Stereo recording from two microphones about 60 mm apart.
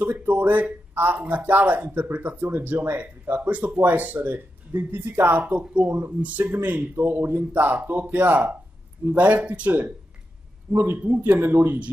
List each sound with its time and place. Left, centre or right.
0.0 s speech: right
5.2 s speech: right